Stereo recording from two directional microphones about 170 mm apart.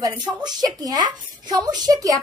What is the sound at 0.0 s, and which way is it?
A woman's voice, 25° right (ahead or behind).